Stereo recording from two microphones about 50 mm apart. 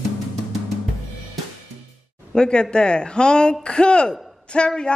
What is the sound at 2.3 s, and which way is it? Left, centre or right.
A woman's voice, centre.